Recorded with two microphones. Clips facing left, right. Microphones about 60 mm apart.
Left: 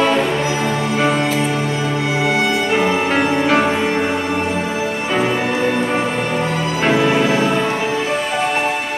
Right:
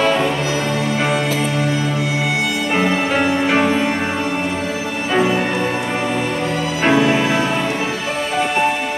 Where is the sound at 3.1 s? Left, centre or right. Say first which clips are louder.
Left 1 dB; centre.